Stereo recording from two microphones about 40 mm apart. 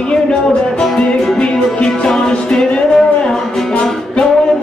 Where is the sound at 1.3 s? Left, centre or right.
Left.